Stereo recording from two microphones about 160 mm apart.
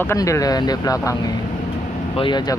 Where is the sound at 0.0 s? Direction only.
20° left (ahead or behind).